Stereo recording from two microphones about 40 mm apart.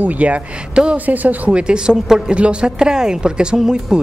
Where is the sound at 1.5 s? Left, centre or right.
Right.